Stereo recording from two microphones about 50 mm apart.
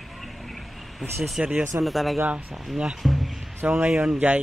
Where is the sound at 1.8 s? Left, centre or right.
Centre.